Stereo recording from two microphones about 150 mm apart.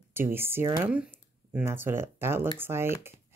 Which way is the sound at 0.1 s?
15° right (ahead or behind).